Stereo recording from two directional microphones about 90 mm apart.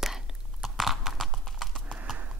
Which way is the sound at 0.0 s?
5° right (ahead or behind).